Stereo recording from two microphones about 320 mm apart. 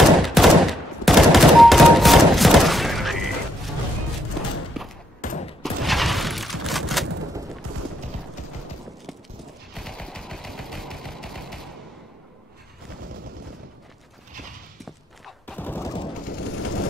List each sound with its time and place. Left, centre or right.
0.2 s gunshot: centre
4.8 s a sound: centre
5.2 s fusillade: left
5.6 s a sound: centre
9.8 s machine gun: centre
15.2 s fusillade: centre